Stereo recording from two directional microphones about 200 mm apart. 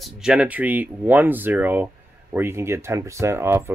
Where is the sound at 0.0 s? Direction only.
5° right (ahead or behind).